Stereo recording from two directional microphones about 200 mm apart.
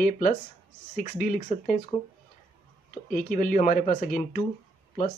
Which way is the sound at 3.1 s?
45° left (ahead or behind).